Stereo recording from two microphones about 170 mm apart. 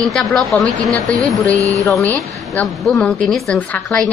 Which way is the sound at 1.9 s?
10° left (ahead or behind).